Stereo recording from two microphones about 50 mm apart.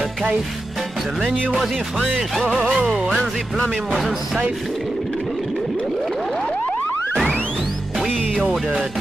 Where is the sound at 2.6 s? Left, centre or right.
Centre.